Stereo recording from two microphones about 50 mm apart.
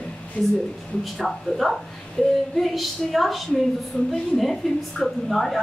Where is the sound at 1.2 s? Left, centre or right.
Centre.